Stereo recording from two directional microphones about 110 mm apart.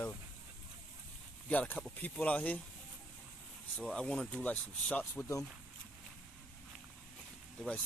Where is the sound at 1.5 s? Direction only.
15° left (ahead or behind).